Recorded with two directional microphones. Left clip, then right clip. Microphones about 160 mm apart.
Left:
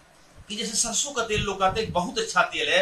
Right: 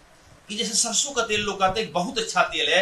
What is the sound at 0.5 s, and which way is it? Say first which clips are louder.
A man's voice: right 3 dB; centre (ahead or behind).